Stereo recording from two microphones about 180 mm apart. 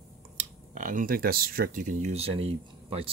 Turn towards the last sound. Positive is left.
turn(degrees=-30)  # may be behind; listen again after turning